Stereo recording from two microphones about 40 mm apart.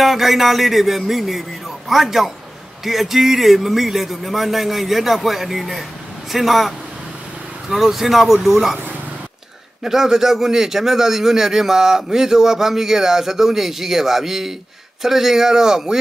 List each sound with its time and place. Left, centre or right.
0.0 s a man's voice: centre
7.7 s a man's voice: centre
9.8 s a man's voice: centre